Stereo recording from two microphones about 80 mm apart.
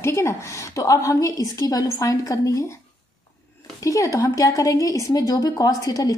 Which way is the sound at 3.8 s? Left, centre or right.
Left.